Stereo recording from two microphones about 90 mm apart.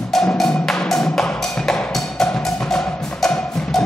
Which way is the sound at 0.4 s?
5° left (ahead or behind).